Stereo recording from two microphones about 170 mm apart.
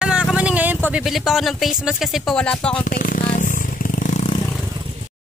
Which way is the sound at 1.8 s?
5° right (ahead or behind).